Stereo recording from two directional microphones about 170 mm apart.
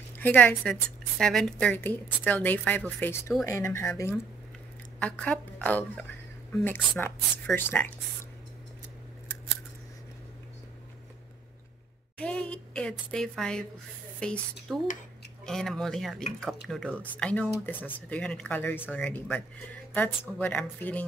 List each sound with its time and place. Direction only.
0.2 s a woman's voice: 10° left (ahead or behind)
4.9 s a woman's voice: 5° left (ahead or behind)
12.2 s a sound: 5° left (ahead or behind)
14.2 s a woman's voice: 5° left (ahead or behind)